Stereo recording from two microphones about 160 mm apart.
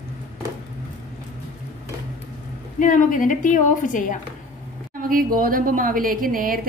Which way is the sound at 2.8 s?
55° left (ahead or behind).